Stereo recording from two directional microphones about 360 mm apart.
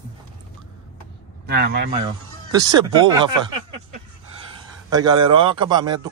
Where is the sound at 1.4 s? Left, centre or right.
Right.